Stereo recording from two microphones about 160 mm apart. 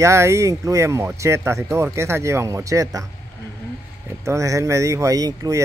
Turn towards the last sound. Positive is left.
turn(degrees=-20)  # may be behind; listen again after turning